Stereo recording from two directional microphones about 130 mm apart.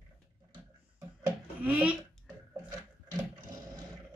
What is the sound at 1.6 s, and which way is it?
Speech, 10° right (ahead or behind).